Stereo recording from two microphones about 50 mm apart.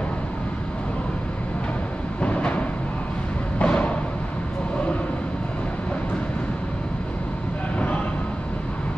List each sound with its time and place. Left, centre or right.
2.2 s music: left